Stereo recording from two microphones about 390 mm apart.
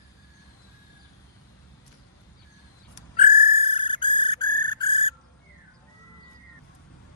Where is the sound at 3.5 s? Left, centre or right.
Centre.